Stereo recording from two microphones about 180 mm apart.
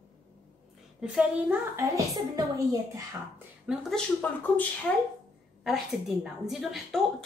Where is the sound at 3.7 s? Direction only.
5° right (ahead or behind).